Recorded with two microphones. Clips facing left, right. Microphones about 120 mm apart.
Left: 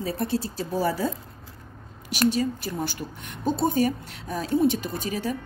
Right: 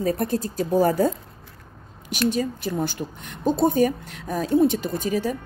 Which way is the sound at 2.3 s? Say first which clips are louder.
Right 2 dB; 50° right (ahead or behind).